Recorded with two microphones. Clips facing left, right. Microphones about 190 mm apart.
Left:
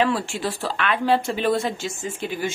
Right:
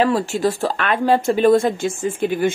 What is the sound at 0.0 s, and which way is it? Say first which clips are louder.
A woman's voice: right 5 dB; 40° right (ahead or behind).